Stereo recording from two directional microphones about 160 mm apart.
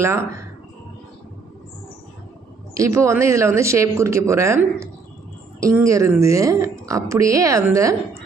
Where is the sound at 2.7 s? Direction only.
20° right (ahead or behind).